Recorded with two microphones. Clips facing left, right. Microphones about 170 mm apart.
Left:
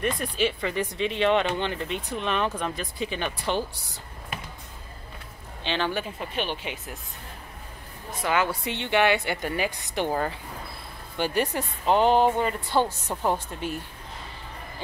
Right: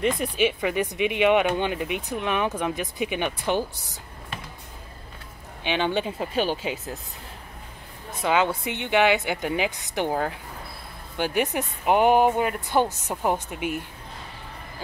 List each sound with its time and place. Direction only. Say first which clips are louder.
0.0 s speech: right 3 dB; 15° right (ahead or behind)
5.6 s speech: right 3 dB; 15° right (ahead or behind)
6.3 s speech: right 5 dB; 40° right (ahead or behind)
8.2 s speech: right 3 dB; 15° right (ahead or behind)
11.1 s speech: right 1 dB; 15° right (ahead or behind)